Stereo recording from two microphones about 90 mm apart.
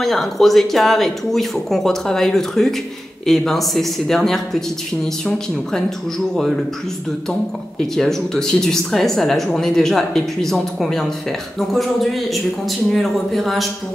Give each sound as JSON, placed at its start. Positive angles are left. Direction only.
{"t": 0.0, "sound": "speech", "side_deg": 5}
{"t": 7.8, "sound": "speech", "side_deg": 5}